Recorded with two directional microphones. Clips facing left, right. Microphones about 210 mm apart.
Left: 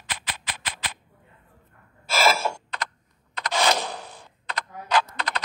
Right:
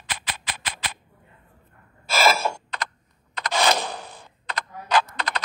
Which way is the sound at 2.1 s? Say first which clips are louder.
Right 1 dB; 50° right (ahead or behind).